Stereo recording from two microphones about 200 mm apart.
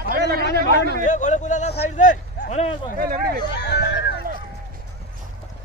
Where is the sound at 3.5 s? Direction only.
55° left (ahead or behind).